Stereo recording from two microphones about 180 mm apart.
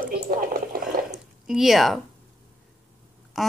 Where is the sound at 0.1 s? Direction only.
50° right (ahead or behind).